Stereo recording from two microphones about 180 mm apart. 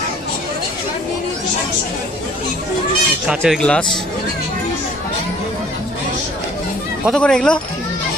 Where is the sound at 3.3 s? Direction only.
Centre (ahead or behind).